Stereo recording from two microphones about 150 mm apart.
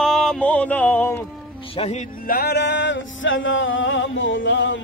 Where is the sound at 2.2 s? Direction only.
80° left.